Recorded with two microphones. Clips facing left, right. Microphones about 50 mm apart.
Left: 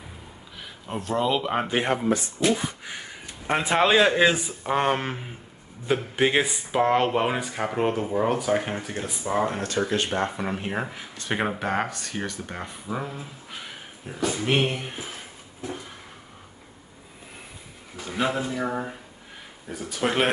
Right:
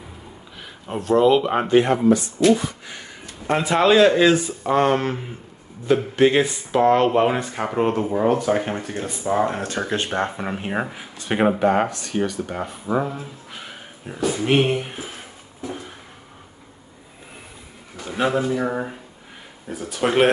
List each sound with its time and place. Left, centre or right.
0.6 s speech: centre
2.0 s speech: left; by 9.5 s centre
9.7 s speech: right
10.3 s speech: centre
12.9 s speech: centre
13.2 s speech: centre
18.1 s speech: centre